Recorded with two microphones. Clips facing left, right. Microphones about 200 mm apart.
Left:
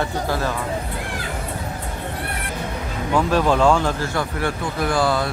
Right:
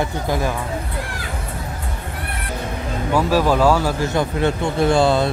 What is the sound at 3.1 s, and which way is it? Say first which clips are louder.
Speech: right 1 dB; 5° right (ahead or behind).